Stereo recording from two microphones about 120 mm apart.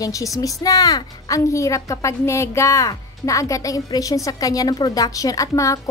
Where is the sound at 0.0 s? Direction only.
25° left (ahead or behind).